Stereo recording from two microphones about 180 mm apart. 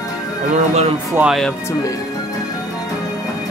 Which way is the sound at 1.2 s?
Centre (ahead or behind).